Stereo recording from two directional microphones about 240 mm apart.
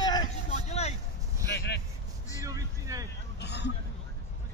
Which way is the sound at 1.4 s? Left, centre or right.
Left.